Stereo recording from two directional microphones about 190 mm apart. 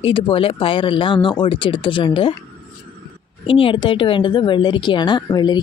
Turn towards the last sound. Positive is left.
turn(degrees=20)  # may be behind; listen again after turning